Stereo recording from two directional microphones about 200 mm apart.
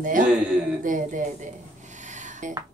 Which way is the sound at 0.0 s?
40° right (ahead or behind).